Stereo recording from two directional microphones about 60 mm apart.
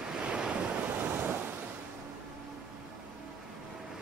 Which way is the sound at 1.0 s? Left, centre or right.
Right.